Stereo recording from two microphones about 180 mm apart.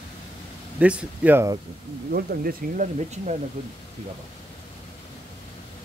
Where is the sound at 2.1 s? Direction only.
55° right (ahead or behind).